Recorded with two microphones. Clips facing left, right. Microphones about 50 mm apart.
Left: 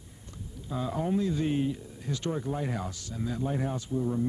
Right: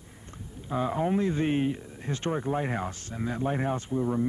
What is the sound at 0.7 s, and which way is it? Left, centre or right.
Speech, right.